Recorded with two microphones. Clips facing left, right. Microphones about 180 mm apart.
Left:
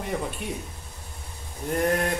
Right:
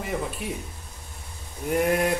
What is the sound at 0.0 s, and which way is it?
Speech, centre (ahead or behind).